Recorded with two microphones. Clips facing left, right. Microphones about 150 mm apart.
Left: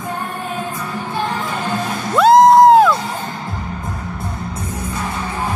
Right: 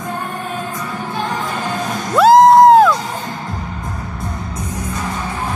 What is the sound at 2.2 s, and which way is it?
Music, centre (ahead or behind).